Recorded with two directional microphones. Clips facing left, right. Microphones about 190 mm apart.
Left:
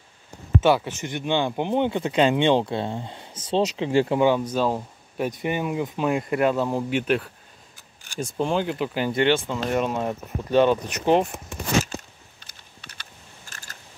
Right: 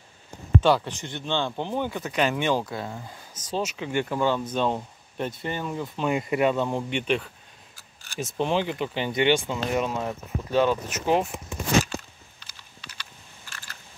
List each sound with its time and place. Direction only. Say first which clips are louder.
0.6 s speech: left 2 dB; 10° left (ahead or behind); by 4.2 s 30° left (ahead or behind)
4.2 s speech: left 4 dB; 10° left (ahead or behind)
6.0 s speech: left 1 dB; centre (ahead or behind)
12.4 s typing: even; 50° left (ahead or behind)